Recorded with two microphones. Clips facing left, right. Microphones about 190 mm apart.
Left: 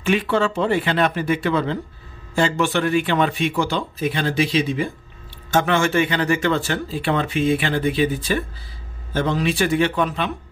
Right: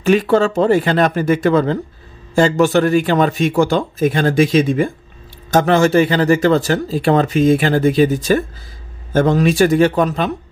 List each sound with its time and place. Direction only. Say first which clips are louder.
0.0 s speech: right 6 dB; 40° right (ahead or behind)
5.5 s speech: right 6 dB; 40° right (ahead or behind)